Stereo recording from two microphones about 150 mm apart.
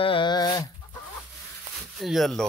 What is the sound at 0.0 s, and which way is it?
Dog, 35° left (ahead or behind).